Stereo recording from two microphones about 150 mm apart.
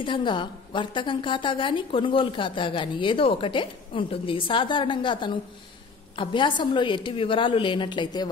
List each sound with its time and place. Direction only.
0.0 s a woman's voice: 30° left (ahead or behind)